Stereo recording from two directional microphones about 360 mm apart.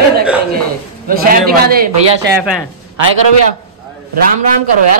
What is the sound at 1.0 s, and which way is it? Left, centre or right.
A man's voice, right.